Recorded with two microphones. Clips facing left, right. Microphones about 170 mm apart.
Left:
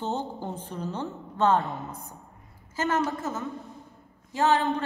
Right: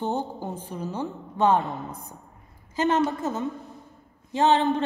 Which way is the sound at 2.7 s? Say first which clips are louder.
Right 4 dB; 20° right (ahead or behind).